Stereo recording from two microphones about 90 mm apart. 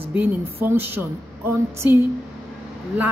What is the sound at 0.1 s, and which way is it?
Speech, 20° right (ahead or behind).